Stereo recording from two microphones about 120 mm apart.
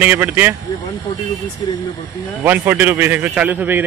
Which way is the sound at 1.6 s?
35° left (ahead or behind).